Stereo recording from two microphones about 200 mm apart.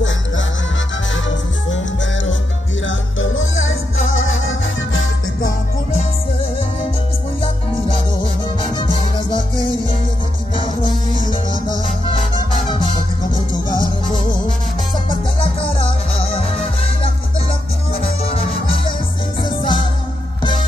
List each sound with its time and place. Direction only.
2.9 s music: 80° left
8.7 s music: 25° left (ahead or behind)
13.3 s music: 20° left (ahead or behind)
16.3 s music: 30° left (ahead or behind)
18.3 s music: 25° left (ahead or behind)